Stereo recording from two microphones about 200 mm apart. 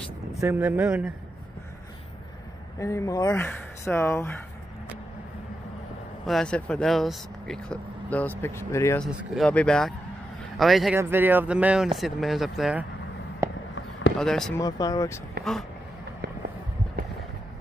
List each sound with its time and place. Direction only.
0.4 s speech: 10° right (ahead or behind)
2.8 s speech: 15° left (ahead or behind)
6.2 s speech: 5° left (ahead or behind)
9.0 s speech: centre (ahead or behind)
11.0 s speech: 10° right (ahead or behind)
13.4 s fireworks: 15° right (ahead or behind)
14.1 s speech: centre (ahead or behind)
14.6 s speech: 20° left (ahead or behind)
16.2 s a sound: 55° right (ahead or behind)